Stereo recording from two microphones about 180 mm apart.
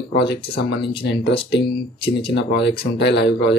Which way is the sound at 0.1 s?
70° left (ahead or behind).